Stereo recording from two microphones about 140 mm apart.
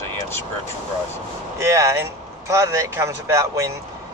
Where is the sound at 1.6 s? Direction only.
20° right (ahead or behind).